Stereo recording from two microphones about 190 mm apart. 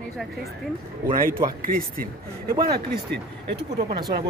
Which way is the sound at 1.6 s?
50° right (ahead or behind).